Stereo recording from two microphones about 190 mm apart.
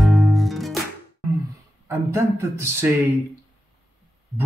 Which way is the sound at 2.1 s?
15° right (ahead or behind).